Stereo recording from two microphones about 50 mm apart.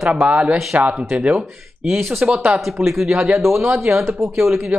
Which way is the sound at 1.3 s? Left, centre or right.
Centre.